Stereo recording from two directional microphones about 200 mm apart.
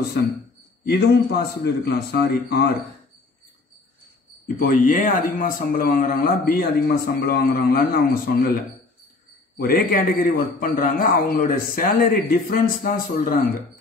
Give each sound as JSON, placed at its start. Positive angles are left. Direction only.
{"t": 0.2, "sound": "a man's voice", "side_deg": 55}
{"t": 4.6, "sound": "a man's voice", "side_deg": 45}
{"t": 9.6, "sound": "a man's voice", "side_deg": 50}